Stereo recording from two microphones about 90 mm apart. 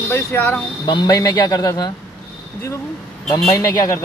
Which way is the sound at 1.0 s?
45° left (ahead or behind).